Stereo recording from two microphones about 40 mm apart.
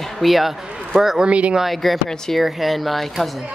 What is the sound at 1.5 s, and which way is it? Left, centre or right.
Speech, centre.